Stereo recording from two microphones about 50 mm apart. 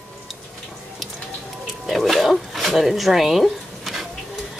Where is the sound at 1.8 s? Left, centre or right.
Centre.